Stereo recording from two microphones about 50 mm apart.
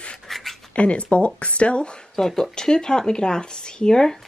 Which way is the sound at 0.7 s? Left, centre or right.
Left.